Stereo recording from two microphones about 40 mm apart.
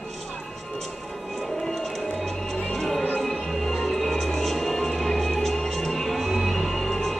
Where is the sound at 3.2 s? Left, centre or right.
Centre.